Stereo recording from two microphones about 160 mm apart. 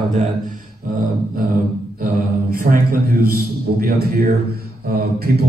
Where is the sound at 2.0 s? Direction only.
60° right (ahead or behind).